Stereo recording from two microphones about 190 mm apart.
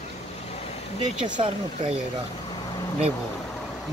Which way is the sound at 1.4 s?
30° right (ahead or behind).